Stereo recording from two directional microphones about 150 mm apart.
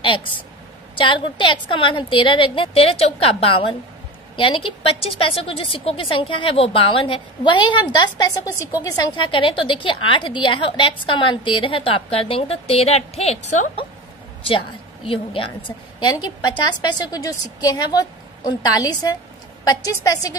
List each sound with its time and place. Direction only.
0.0 s a sound: 35° left (ahead or behind)
0.9 s a woman's voice: 35° left (ahead or behind); by 13.7 s 50° left (ahead or behind)
15.4 s a woman's voice: 35° left (ahead or behind)